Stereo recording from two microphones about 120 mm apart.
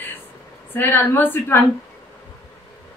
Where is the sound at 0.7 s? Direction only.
15° left (ahead or behind).